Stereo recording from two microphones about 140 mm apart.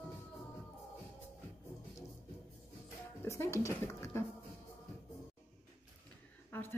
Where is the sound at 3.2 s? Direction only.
20° left (ahead or behind).